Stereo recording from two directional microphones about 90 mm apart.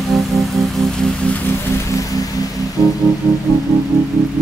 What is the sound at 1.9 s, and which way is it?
Music, 40° left (ahead or behind).